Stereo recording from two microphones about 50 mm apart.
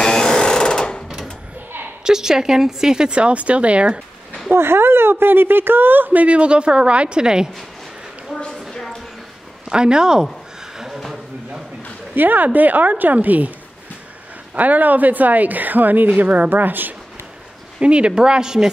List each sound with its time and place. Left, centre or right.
0.0 s sewing machine: centre
1.0 s door: centre
2.0 s speech: centre
4.5 s speech: right
6.2 s a woman's voice: right
8.4 s a sound: centre
8.6 s a sound: centre
9.7 s speech: centre
10.8 s a sound: centre
12.2 s a woman's voice: right
14.5 s a woman's voice: right
17.7 s speech: right